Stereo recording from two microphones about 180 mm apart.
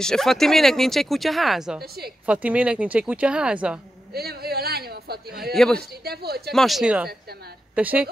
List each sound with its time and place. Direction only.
0.0 s speech: centre (ahead or behind)
1.8 s speech: 60° right (ahead or behind)
2.2 s speech: 5° right (ahead or behind)
4.1 s a man's voice: 60° right (ahead or behind)
5.5 s speech: 5° left (ahead or behind)
5.8 s speech: 60° right (ahead or behind)
6.5 s a woman's voice: centre (ahead or behind)